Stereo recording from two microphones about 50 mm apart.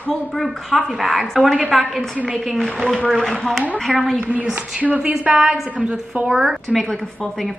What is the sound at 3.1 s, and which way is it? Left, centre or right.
Speech, centre.